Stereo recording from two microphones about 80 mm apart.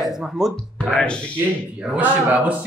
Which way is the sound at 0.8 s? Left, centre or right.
Centre.